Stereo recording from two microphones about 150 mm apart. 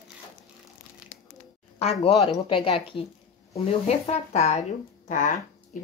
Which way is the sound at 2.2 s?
35° left (ahead or behind).